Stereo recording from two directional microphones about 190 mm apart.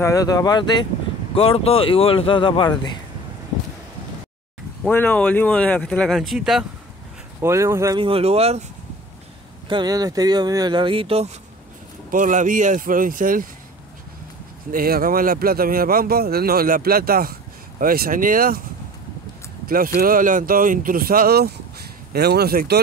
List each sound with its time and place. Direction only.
0.0 s speech: 20° left (ahead or behind)
4.8 s speech: 10° left (ahead or behind)
7.4 s speech: 15° right (ahead or behind)
8.0 s speech: 30° right (ahead or behind)
9.7 s speech: 20° right (ahead or behind)
12.1 s speech: 45° right (ahead or behind)
14.7 s speech: 50° right (ahead or behind)
19.7 s speech: 50° right (ahead or behind)